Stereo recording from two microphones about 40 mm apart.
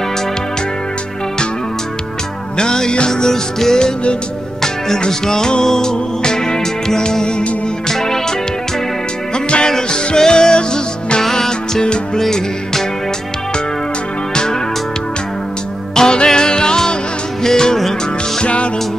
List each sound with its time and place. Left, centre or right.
2.5 s music: centre
9.7 s music: centre
14.3 s music: centre
15.9 s music: centre
18.4 s music: left